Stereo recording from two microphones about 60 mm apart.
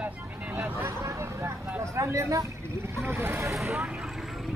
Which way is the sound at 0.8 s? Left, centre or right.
Right.